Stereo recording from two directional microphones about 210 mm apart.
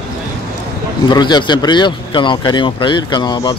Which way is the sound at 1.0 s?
20° left (ahead or behind).